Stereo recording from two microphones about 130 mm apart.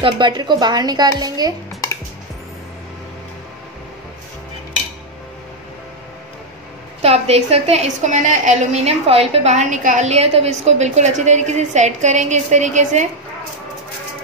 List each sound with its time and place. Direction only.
0.0 s a woman's voice: 35° right (ahead or behind)
7.0 s a woman's voice: 50° right (ahead or behind)